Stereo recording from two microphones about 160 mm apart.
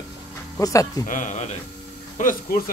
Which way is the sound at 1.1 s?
50° left (ahead or behind).